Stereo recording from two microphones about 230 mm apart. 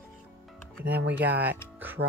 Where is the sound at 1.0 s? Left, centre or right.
Right.